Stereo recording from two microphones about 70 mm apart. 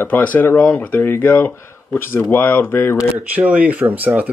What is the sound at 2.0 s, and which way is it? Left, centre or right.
Speech, left.